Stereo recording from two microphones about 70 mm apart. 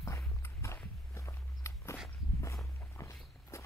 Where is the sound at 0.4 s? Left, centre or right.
Left.